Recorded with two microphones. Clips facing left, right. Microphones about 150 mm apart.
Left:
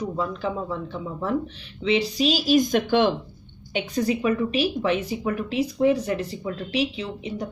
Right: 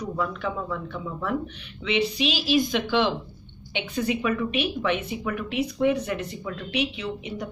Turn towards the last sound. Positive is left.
turn(degrees=30)  # may be behind; listen again after turning